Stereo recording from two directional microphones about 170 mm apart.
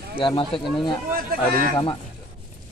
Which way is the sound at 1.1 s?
60° right (ahead or behind).